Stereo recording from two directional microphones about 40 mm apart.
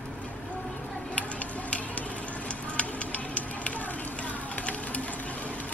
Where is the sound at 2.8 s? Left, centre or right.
Left.